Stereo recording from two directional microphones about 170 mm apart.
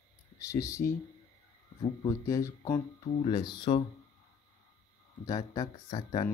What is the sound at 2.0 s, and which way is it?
Speech, 20° left (ahead or behind).